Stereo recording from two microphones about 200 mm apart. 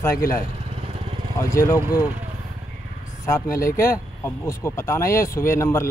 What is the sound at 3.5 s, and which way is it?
Speech, 15° left (ahead or behind).